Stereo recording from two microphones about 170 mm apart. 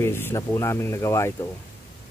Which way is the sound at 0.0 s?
15° left (ahead or behind).